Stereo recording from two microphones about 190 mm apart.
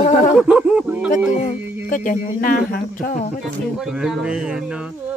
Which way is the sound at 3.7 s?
Centre (ahead or behind).